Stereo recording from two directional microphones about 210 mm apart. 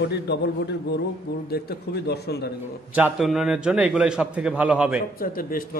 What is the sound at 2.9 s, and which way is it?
A man's voice, 5° right (ahead or behind).